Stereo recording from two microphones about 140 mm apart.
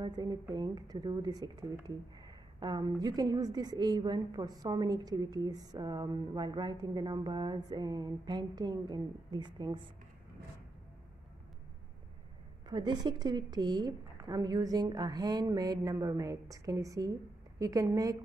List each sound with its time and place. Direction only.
0.0 s a woman's voice: 30° right (ahead or behind)
12.6 s a woman's voice: 30° right (ahead or behind)